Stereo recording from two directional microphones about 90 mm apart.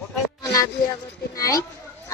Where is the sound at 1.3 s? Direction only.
40° left (ahead or behind).